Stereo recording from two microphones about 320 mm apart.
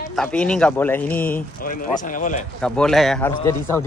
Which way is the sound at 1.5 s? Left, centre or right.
Left.